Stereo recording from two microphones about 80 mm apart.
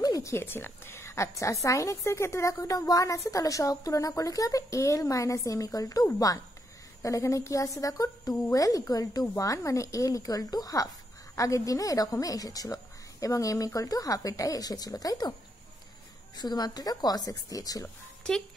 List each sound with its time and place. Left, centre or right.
0.0 s a woman's voice: left
16.3 s speech: left